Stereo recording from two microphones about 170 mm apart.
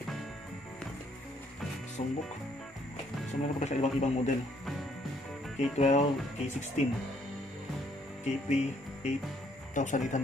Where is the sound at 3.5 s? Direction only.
45° left (ahead or behind).